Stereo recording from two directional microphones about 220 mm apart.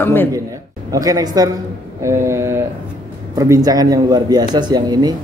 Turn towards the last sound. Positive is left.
turn(degrees=-20)  # may be behind; listen again after turning